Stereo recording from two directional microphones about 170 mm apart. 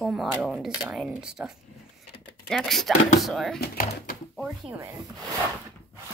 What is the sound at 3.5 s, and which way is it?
Speech, 60° left (ahead or behind).